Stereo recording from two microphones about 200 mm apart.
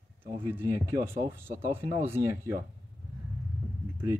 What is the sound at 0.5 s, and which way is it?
Speech, 10° right (ahead or behind).